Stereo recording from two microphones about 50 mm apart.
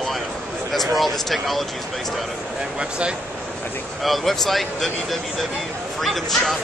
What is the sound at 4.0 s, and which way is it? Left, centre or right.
Speech, centre.